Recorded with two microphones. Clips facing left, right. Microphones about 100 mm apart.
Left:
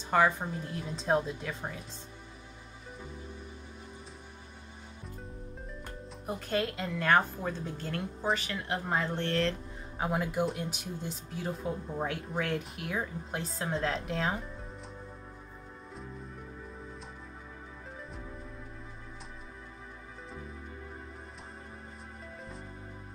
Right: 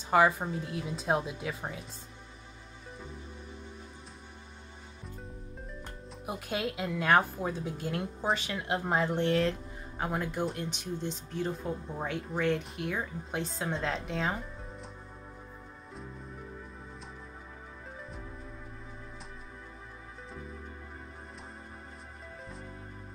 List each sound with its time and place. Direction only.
0.1 s a woman's voice: 5° right (ahead or behind)
6.2 s a woman's voice: 5° right (ahead or behind)
8.4 s a woman's voice: 20° right (ahead or behind)
9.9 s speech: 5° left (ahead or behind)